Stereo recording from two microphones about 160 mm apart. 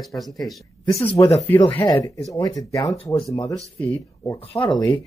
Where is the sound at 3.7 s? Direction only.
10° left (ahead or behind).